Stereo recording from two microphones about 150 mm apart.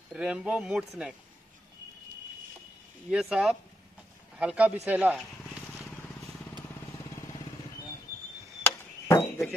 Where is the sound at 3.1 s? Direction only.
5° right (ahead or behind).